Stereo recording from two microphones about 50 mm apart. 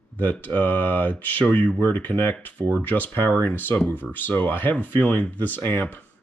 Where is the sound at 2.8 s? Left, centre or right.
Left.